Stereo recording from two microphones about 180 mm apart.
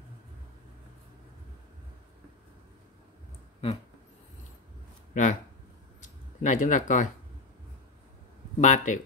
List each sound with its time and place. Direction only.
5.1 s speech: 45° left (ahead or behind)
5.9 s a sound: 45° left (ahead or behind)
8.5 s speech: 45° left (ahead or behind)